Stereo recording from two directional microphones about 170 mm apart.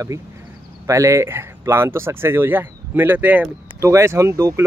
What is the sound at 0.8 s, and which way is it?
Speech, 20° right (ahead or behind).